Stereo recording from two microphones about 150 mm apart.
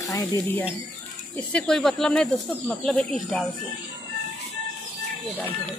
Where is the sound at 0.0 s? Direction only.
25° left (ahead or behind).